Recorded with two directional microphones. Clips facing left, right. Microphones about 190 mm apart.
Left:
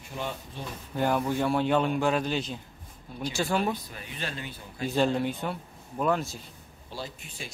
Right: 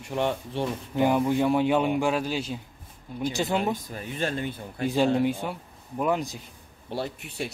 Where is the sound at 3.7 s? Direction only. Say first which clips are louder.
Right 3 dB; 45° right (ahead or behind).